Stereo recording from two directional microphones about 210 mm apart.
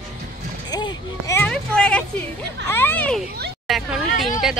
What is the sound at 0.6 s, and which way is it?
Speech, 20° left (ahead or behind).